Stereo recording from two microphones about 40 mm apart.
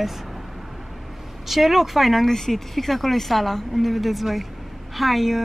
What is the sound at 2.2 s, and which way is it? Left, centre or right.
Speech, centre.